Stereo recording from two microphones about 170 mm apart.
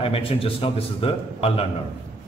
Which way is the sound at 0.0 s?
35° left (ahead or behind).